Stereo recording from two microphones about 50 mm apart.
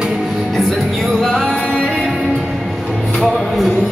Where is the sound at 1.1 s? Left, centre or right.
Centre.